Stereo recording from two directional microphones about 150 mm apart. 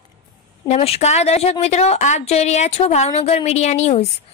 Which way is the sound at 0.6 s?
40° left (ahead or behind).